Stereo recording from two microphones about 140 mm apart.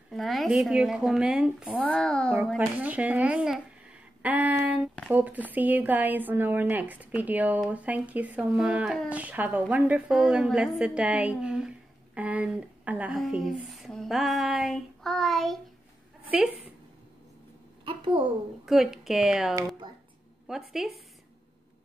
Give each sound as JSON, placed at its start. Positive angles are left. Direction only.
{"t": 0.1, "sound": "speech", "side_deg": 0}
{"t": 1.8, "sound": "a child's voice", "side_deg": 10}
{"t": 2.5, "sound": "speech", "side_deg": -10}
{"t": 16.3, "sound": "a woman's voice", "side_deg": -10}
{"t": 17.8, "sound": "a child's voice", "side_deg": -35}
{"t": 18.7, "sound": "speech", "side_deg": 0}